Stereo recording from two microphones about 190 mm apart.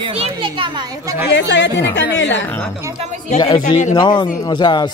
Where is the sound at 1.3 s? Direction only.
70° left (ahead or behind).